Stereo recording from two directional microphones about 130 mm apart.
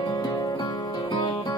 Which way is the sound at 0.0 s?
35° left (ahead or behind).